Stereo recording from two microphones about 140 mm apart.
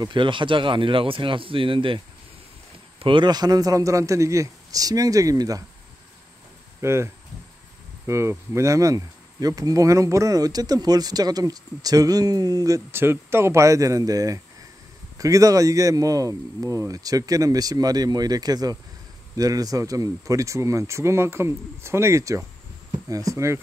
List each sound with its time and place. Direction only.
0.0 s speech: 35° right (ahead or behind)
3.0 s speech: 35° right (ahead or behind)
6.8 s speech: 20° right (ahead or behind)
8.1 s speech: 20° right (ahead or behind)